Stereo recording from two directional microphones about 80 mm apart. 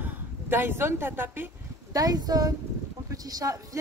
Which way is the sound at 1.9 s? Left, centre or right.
Right.